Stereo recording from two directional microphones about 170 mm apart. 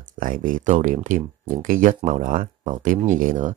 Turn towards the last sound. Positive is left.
turn(degrees=-50)  # may be behind; listen again after turning